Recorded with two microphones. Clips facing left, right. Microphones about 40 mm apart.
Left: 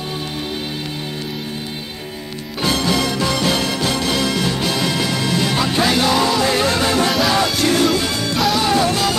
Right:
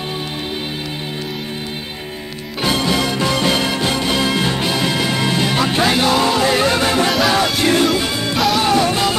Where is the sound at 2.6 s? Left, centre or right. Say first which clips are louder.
Right 1 dB; centre.